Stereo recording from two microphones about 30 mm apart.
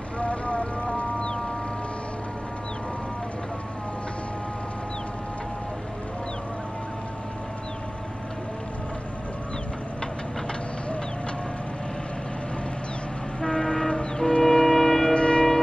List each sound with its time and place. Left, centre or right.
0.2 s music: left
1.2 s music: left
13.4 s train: left
14.4 s wind instrument: centre
15.1 s a sound: left